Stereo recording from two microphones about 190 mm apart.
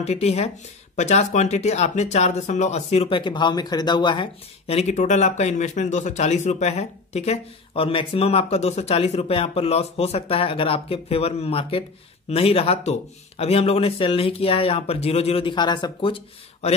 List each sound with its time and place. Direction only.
0.0 s speech: 35° left (ahead or behind)